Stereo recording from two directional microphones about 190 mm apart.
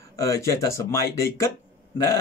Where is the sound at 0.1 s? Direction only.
15° left (ahead or behind).